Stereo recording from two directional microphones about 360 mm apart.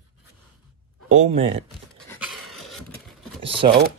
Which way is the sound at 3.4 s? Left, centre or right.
Centre.